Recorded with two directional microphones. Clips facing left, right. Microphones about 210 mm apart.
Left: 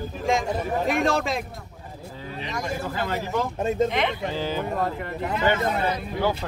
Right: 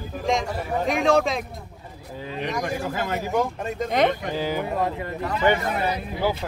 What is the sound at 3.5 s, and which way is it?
Speech, 25° left (ahead or behind).